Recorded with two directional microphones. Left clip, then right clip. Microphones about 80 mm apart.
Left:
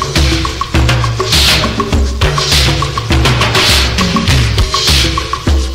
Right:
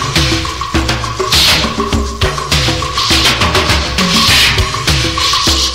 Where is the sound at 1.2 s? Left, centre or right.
Left.